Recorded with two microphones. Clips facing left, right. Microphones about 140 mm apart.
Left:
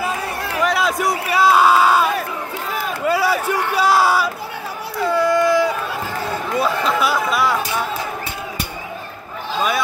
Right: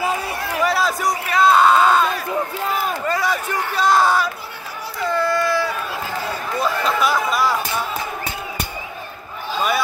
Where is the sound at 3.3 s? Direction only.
65° left (ahead or behind).